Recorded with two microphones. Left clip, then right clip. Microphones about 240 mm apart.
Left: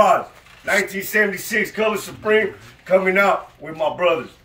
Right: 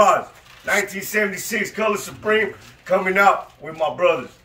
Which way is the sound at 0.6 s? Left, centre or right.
Centre.